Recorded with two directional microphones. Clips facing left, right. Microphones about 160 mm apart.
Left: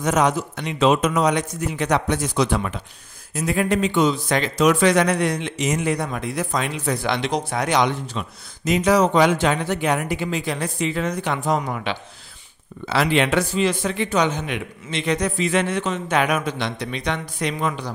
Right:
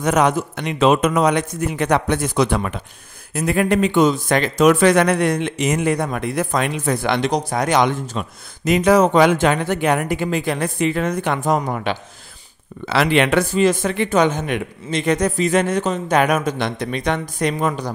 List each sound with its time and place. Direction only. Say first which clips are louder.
0.0 s a man's voice: right 3 dB; 60° right (ahead or behind); by 12.0 s 45° right (ahead or behind)
12.8 s speech: right 3 dB; 75° right (ahead or behind); by 17.9 s 45° right (ahead or behind)